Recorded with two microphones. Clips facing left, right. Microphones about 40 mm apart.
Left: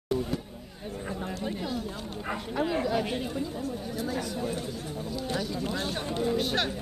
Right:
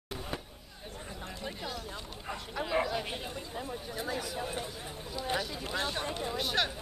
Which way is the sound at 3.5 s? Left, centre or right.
Right.